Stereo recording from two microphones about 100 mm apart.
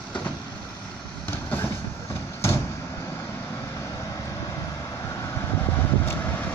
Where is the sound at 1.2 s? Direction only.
20° left (ahead or behind).